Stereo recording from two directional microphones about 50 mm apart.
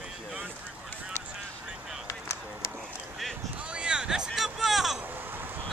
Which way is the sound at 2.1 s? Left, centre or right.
Left.